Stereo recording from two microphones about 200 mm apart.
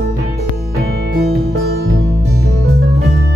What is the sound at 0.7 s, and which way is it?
Music, 55° right (ahead or behind).